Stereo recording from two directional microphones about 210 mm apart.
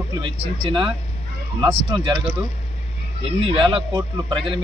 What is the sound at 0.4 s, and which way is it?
Speech, 25° right (ahead or behind).